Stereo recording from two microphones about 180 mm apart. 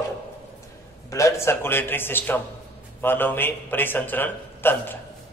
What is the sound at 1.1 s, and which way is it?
A man's voice, 15° left (ahead or behind).